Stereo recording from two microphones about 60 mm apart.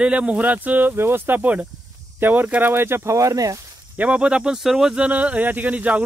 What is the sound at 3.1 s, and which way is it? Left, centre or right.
Speech, right.